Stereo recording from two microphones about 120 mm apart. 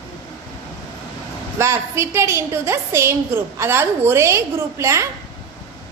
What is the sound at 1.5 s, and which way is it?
A woman's voice, 20° right (ahead or behind).